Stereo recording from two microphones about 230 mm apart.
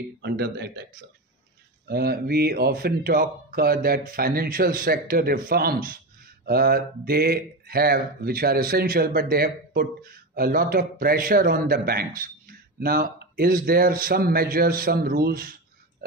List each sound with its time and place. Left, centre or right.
0.2 s speech: right
1.9 s speech: right